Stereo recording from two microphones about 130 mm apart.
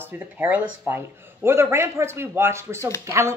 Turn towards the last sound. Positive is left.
turn(degrees=-20)  # may be behind; listen again after turning